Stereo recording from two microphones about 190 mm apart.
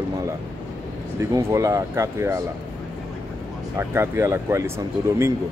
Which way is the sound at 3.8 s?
15° right (ahead or behind).